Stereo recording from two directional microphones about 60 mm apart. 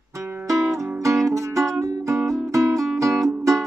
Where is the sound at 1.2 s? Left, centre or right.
Right.